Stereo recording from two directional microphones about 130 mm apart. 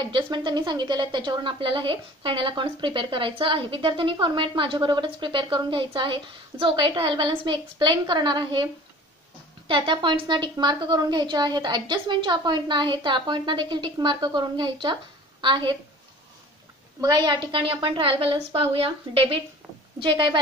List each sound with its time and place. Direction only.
0.0 s speech: 35° right (ahead or behind)
9.7 s speech: 40° right (ahead or behind)
17.0 s a woman's voice: 30° right (ahead or behind)